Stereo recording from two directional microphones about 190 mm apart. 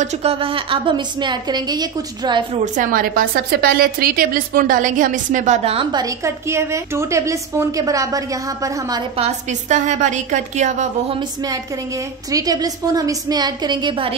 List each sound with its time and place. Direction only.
0.0 s a woman's voice: 30° right (ahead or behind)
2.6 s a woman's voice: 40° right (ahead or behind); by 9.0 s 20° right (ahead or behind)
9.1 s a woman's voice: 35° right (ahead or behind)
11.1 s a woman's voice: 20° right (ahead or behind)